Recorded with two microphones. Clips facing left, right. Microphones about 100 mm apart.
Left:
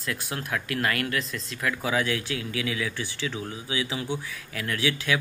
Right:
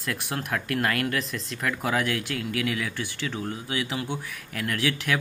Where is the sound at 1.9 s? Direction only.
55° right (ahead or behind).